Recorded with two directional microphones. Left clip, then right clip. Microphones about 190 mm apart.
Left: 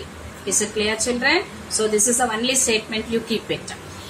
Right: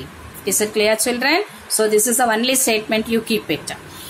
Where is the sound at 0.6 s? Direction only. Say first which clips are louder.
Right 5 dB; 50° right (ahead or behind).